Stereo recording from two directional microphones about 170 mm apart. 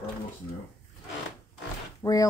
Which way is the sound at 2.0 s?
20° left (ahead or behind).